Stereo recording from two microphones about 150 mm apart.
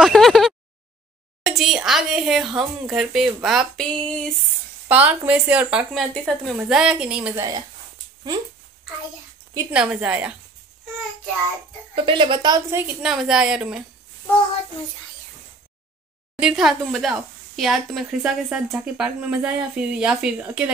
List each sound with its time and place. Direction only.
0.0 s a sound: centre (ahead or behind)
1.4 s a woman's voice: centre (ahead or behind)
4.8 s speech: 10° right (ahead or behind)
6.1 s a woman's voice: 5° left (ahead or behind)
7.3 s speech: 25° right (ahead or behind)
9.7 s speech: 10° right (ahead or behind)
11.9 s a woman's voice: 35° right (ahead or behind)
13.0 s a woman's voice: 5° right (ahead or behind)
16.3 s speech: 5° right (ahead or behind)